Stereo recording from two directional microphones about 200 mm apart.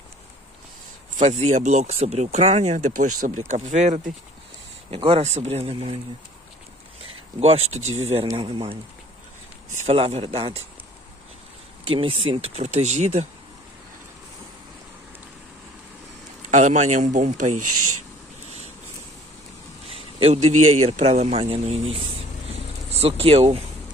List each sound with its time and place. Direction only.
1.1 s speech: 35° right (ahead or behind)
7.3 s speech: 30° right (ahead or behind)
9.8 s speech: 30° right (ahead or behind)
11.8 s speech: 25° right (ahead or behind)
16.4 s speech: 35° right (ahead or behind)
17.7 s speech: 90° right
19.9 s a sound: 30° right (ahead or behind)
20.8 s speech: 30° right (ahead or behind)
22.9 s speech: 30° right (ahead or behind)